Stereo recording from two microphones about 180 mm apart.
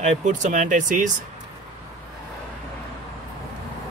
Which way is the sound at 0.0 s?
45° right (ahead or behind).